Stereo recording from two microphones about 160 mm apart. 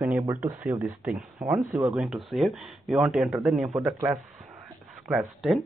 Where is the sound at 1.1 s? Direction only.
5° right (ahead or behind).